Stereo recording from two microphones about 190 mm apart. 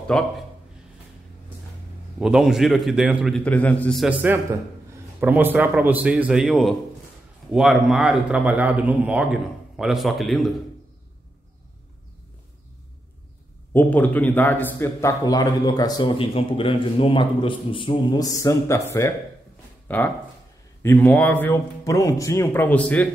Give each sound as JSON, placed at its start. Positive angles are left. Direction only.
{"t": 0.1, "sound": "a man's voice", "side_deg": 5}
{"t": 2.1, "sound": "a man's voice", "side_deg": -5}
{"t": 13.7, "sound": "a man's voice", "side_deg": 10}